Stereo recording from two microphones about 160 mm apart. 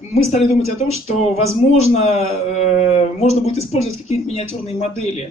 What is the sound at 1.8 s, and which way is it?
A man's voice, 40° left (ahead or behind).